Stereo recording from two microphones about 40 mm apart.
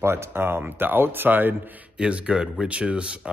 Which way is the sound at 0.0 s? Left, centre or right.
Right.